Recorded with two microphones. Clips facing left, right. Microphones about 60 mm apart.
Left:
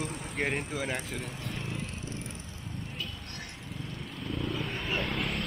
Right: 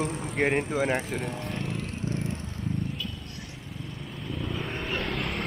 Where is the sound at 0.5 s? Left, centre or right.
Right.